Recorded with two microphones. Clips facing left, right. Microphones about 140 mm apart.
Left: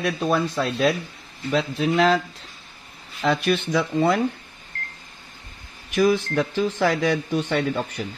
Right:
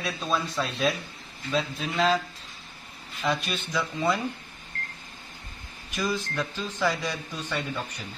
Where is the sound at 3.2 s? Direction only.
65° left (ahead or behind).